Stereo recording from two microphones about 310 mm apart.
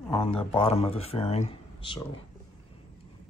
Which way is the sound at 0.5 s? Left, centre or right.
Centre.